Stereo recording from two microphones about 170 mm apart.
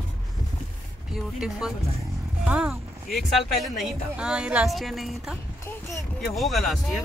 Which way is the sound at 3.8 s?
5° right (ahead or behind).